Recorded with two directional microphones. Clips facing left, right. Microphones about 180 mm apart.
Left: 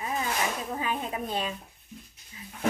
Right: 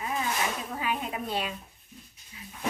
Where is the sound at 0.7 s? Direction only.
25° left (ahead or behind).